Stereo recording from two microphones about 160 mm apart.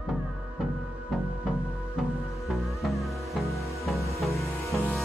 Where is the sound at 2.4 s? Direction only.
Centre (ahead or behind).